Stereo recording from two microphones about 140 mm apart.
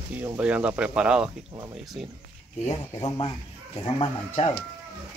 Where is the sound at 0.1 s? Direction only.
10° right (ahead or behind).